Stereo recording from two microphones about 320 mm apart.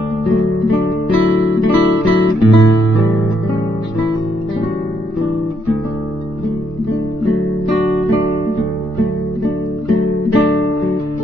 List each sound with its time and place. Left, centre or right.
1.1 s guitar: left
10.0 s music: left